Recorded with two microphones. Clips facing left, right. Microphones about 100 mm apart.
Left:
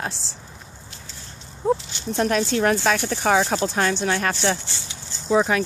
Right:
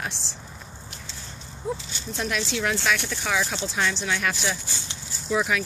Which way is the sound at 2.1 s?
45° left (ahead or behind).